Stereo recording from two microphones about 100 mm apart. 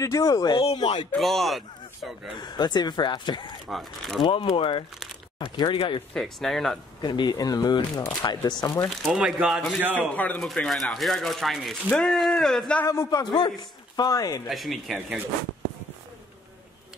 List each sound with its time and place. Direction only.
0.0 s speech: 35° left (ahead or behind)
1.1 s speech: centre (ahead or behind)
2.3 s speech: 50° left (ahead or behind)
3.6 s speech: centre (ahead or behind)
4.6 s speech: 60° left (ahead or behind)
6.1 s speech: 5° left (ahead or behind)
7.0 s speech: 45° left (ahead or behind)
9.1 s speech: 5° right (ahead or behind)
9.9 s speech: 15° left (ahead or behind)
10.4 s speech: 5° left (ahead or behind)
12.8 s a man's voice: 30° left (ahead or behind)
13.2 s speech: 50° left (ahead or behind)
14.5 s speech: centre (ahead or behind)